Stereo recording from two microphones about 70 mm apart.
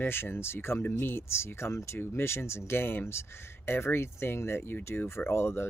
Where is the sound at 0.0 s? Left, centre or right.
Left.